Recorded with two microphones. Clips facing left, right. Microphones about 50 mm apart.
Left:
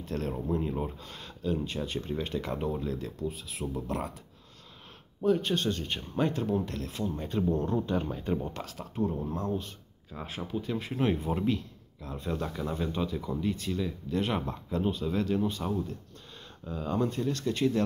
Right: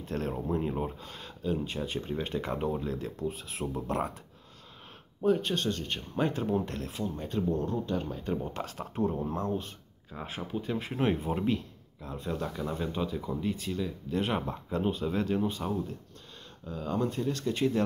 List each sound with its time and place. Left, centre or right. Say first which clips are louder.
0.0 s speech: even; centre
5.2 s speech: even; centre
5.5 s speech: left 1 dB; centre
6.1 s speech: even; centre
7.1 s speech: left 2 dB; centre
7.6 s speech: left 2 dB; centre
8.5 s a man's voice: right 1 dB; right
12.1 s speech: left 1 dB; centre
15.6 s speech: left 1 dB; centre
16.6 s speech: left 1 dB; centre